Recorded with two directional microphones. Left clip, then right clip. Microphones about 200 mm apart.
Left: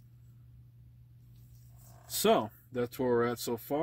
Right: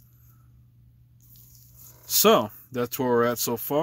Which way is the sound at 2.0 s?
40° right (ahead or behind).